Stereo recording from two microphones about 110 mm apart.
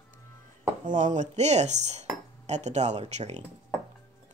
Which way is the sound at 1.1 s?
90° right.